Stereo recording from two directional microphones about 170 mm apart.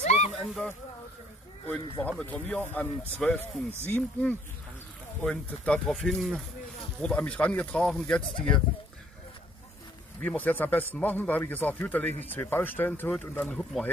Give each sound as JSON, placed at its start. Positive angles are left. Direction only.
{"t": 0.0, "sound": "a sound", "side_deg": 40}
{"t": 0.3, "sound": "a man's voice", "side_deg": 0}
{"t": 10.2, "sound": "a man's voice", "side_deg": 10}